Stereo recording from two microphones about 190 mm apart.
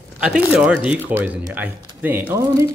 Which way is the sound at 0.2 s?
5° right (ahead or behind).